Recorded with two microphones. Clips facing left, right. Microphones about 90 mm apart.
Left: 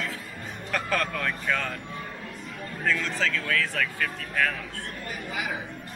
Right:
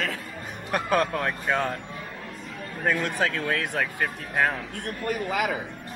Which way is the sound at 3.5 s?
20° right (ahead or behind).